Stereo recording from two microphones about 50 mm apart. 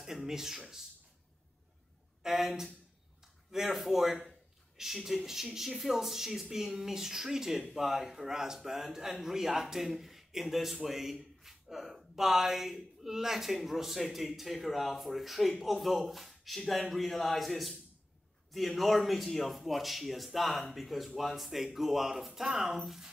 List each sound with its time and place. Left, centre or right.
0.0 s speech: centre
2.2 s a man's voice: centre